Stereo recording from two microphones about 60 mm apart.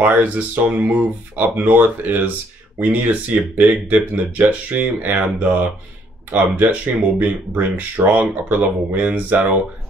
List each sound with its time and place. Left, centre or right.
0.0 s speech: right